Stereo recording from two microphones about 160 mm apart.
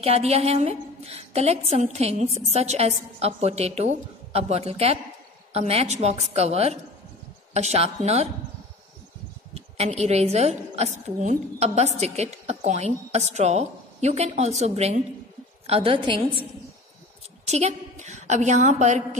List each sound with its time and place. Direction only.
0.0 s a woman's voice: 40° right (ahead or behind)
9.5 s a woman's voice: 40° right (ahead or behind)
17.5 s a woman's voice: 40° right (ahead or behind)